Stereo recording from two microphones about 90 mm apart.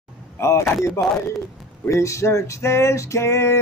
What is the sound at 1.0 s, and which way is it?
Music, 35° left (ahead or behind).